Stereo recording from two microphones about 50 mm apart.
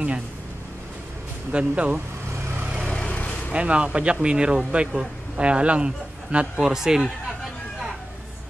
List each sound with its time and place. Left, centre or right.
1.5 s speech: right
2.6 s vehicle: centre
2.9 s vehicle: left
3.5 s a man's voice: right
6.6 s speech: centre